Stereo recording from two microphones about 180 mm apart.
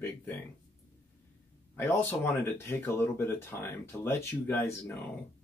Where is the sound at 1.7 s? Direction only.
15° left (ahead or behind).